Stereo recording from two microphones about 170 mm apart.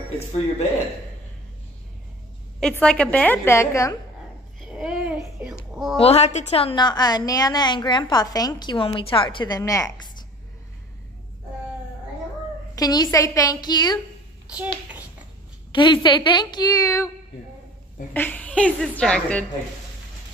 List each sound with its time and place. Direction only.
2.6 s a woman's voice: 5° left (ahead or behind)
4.6 s babbling: centre (ahead or behind)
5.9 s a woman's voice: 40° left (ahead or behind); by 10.1 s 20° left (ahead or behind)
12.7 s a woman's voice: 25° left (ahead or behind)
15.7 s a woman's voice: 25° left (ahead or behind)
18.1 s a woman's voice: 10° left (ahead or behind)